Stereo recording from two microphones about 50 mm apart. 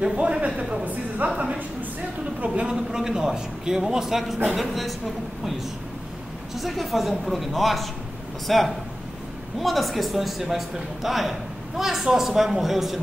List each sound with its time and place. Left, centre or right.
0.0 s a woman's voice: centre
1.3 s a sound: centre
2.4 s a man's voice: right; by 4.9 s centre
6.5 s a man's voice: centre